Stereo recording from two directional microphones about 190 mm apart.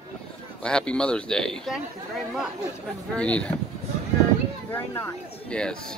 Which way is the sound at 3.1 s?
5° left (ahead or behind).